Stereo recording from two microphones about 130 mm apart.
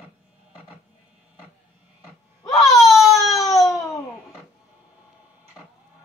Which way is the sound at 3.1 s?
25° left (ahead or behind).